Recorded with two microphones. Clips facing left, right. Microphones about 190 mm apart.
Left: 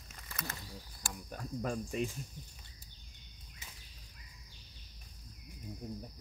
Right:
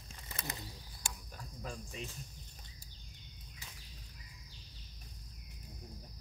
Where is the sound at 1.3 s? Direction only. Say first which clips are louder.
Left 11 dB; 55° left (ahead or behind).